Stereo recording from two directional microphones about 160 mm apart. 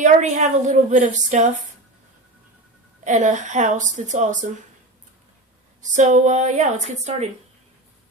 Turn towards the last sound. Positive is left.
turn(degrees=-50)  # may be behind; listen again after turning